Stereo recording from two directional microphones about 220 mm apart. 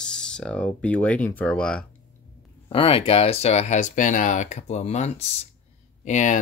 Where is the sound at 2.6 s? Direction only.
25° left (ahead or behind).